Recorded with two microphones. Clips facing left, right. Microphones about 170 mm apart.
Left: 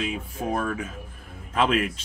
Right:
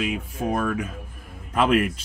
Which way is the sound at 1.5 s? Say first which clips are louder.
Right 3 dB; 50° right (ahead or behind).